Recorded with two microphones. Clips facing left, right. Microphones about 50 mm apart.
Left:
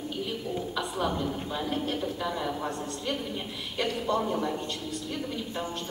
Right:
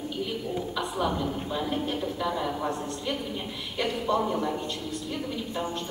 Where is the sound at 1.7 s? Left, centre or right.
Centre.